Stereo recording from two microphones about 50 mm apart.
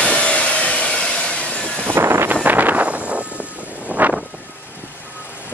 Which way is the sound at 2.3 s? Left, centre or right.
Right.